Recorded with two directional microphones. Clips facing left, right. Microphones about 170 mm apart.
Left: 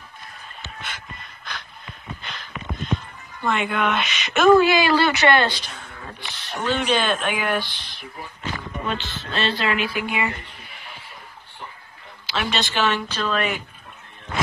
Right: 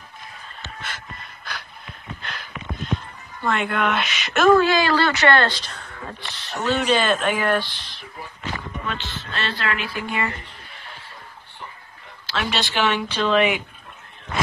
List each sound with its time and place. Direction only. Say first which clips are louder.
0.8 s a sound: right 1 dB; centre (ahead or behind)
3.4 s speech: even; centre (ahead or behind)
5.9 s speech: right 2 dB; centre (ahead or behind)
8.8 s speech: left 2 dB; 25° left (ahead or behind)
12.4 s speech: even; 10° right (ahead or behind)